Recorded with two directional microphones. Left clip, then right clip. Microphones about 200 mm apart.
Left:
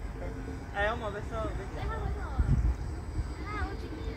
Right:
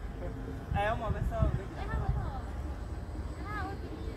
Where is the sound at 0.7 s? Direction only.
50° right (ahead or behind).